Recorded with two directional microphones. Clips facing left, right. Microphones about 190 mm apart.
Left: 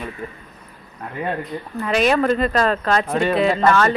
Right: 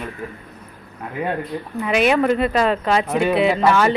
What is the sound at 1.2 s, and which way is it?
Speech, 10° right (ahead or behind).